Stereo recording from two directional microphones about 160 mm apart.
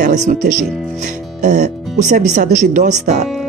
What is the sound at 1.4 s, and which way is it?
Speech, 50° right (ahead or behind).